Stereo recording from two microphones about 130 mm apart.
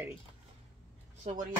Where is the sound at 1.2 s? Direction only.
70° right (ahead or behind).